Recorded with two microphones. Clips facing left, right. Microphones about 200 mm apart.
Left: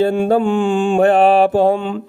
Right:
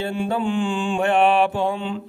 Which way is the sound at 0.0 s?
45° left (ahead or behind).